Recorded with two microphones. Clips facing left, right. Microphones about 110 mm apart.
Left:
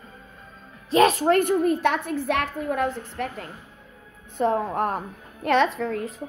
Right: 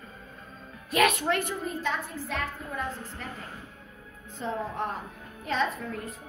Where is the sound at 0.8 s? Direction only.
30° left (ahead or behind).